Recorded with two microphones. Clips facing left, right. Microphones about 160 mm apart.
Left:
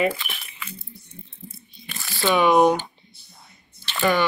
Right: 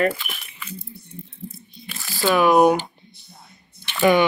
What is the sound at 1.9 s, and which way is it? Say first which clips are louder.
Speech: right 2 dB; 5° right (ahead or behind).